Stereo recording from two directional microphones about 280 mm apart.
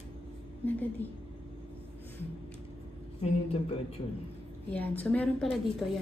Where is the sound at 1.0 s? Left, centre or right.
Centre.